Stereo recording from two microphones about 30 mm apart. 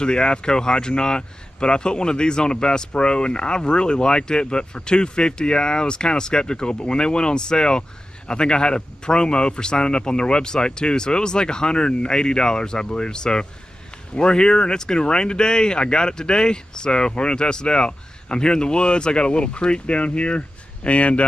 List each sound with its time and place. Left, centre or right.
0.0 s speech: left